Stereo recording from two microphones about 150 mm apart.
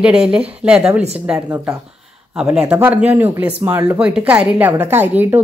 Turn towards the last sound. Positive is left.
turn(degrees=-15)  # may be behind; listen again after turning